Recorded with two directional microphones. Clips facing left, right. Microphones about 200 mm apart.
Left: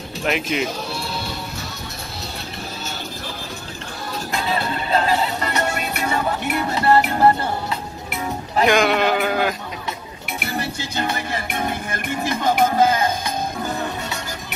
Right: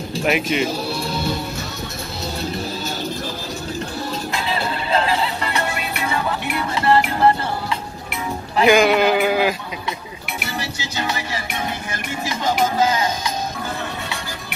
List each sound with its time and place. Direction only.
0.2 s speech: 5° right (ahead or behind)
4.5 s music: 45° left (ahead or behind)
8.6 s sheep: 5° right (ahead or behind)
10.4 s music: 55° left (ahead or behind)